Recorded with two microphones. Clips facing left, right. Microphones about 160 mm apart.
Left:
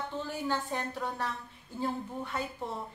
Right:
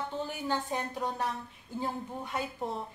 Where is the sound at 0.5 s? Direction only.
15° right (ahead or behind).